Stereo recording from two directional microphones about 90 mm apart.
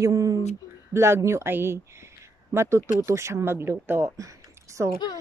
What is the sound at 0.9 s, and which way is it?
A woman's voice, 30° right (ahead or behind).